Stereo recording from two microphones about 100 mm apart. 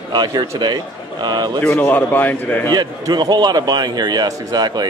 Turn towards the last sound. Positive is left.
turn(degrees=-45)  # may be behind; listen again after turning